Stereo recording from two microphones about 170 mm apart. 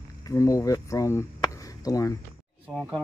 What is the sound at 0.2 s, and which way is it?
Speech, 20° left (ahead or behind).